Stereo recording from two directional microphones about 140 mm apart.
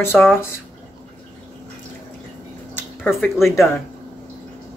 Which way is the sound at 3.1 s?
Centre (ahead or behind).